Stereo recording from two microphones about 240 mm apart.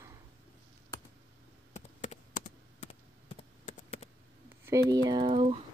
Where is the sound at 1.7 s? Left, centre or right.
Left.